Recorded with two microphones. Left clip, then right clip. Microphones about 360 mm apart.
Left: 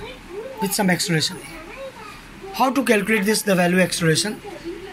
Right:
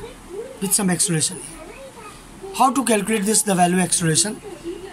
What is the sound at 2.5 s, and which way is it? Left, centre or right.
Speech, centre.